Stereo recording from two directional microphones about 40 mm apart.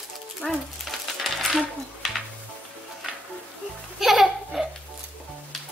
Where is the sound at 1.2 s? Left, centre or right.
Centre.